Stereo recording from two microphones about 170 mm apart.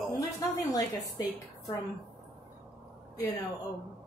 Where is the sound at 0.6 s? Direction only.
20° left (ahead or behind).